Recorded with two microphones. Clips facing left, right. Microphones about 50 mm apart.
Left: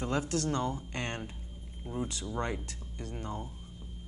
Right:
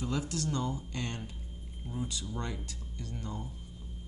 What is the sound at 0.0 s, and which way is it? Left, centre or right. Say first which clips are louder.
Speech: left 3 dB; left.